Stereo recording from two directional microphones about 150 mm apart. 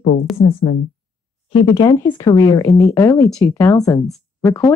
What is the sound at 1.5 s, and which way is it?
A woman's voice, 35° left (ahead or behind).